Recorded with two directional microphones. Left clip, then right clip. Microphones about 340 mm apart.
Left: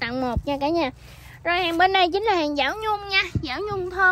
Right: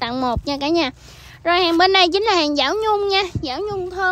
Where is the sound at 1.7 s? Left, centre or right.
Centre.